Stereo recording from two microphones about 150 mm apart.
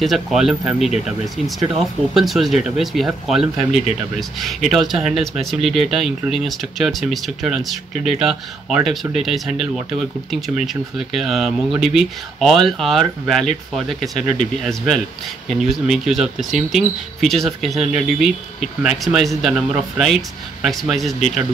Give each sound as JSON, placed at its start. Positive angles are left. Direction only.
{"t": 0.0, "sound": "speech", "side_deg": 0}
{"t": 2.1, "sound": "speech", "side_deg": 0}